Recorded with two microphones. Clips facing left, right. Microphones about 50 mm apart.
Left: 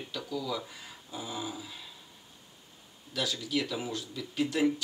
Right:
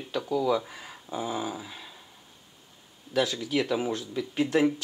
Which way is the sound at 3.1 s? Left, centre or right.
Right.